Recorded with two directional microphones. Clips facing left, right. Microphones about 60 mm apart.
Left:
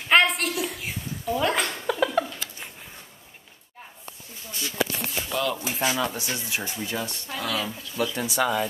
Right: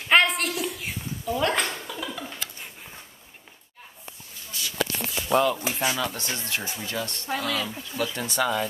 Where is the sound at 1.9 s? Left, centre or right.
Left.